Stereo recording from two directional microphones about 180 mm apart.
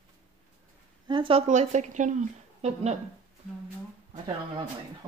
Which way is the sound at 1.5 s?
40° right (ahead or behind).